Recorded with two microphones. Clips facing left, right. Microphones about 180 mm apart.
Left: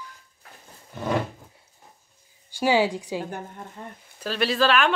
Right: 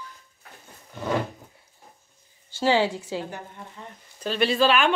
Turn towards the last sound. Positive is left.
turn(degrees=0)  # may be behind; listen again after turning